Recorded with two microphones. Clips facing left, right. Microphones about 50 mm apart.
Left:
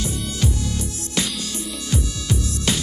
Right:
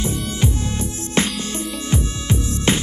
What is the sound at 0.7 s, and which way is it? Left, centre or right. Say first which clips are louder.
Music: right 3 dB; right.